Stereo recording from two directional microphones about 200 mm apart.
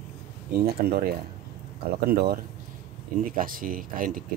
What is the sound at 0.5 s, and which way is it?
Speech, 50° right (ahead or behind).